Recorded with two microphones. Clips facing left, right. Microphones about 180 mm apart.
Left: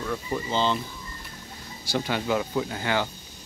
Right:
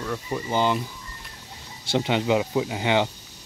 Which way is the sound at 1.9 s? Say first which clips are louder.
Right 4 dB; 20° right (ahead or behind).